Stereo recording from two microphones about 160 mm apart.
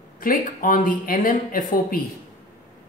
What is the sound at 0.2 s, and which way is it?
Speech, 60° left (ahead or behind).